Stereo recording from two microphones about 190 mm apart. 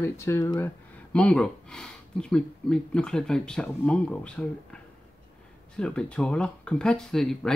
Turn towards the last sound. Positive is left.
turn(degrees=0)  # may be behind; listen again after turning